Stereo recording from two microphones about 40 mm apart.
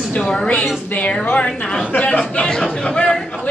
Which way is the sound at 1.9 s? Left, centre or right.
Left.